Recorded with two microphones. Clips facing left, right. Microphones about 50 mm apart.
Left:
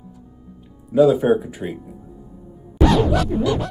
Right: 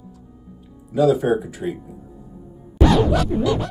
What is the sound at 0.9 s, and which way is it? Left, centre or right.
Speech, centre.